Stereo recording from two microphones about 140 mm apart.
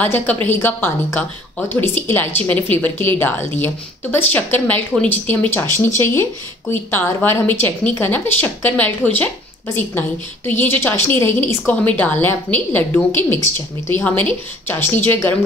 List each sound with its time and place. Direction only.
0.0 s a woman's voice: 10° left (ahead or behind)